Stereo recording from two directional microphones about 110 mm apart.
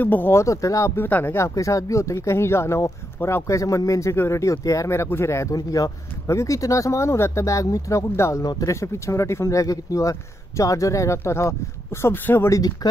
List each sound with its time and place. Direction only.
0.0 s speech: 20° left (ahead or behind)